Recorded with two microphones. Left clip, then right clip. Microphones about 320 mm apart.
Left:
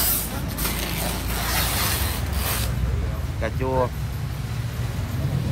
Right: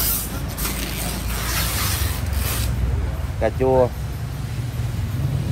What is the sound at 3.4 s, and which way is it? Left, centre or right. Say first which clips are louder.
Speech: right 7 dB; centre.